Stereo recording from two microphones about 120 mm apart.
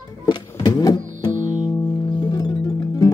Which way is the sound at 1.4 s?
30° left (ahead or behind).